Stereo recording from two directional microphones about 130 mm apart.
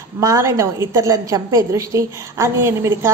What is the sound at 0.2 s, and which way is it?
A woman's voice, 25° right (ahead or behind).